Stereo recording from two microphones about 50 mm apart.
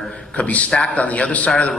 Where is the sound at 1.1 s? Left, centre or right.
Left.